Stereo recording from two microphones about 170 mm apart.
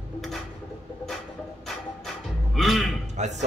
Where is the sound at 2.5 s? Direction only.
Centre (ahead or behind).